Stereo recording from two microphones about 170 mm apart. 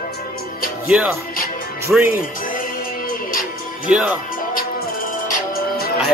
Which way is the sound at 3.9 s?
5° right (ahead or behind).